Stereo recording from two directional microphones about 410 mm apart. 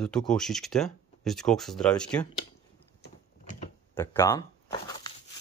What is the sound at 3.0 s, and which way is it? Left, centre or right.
Typing, centre.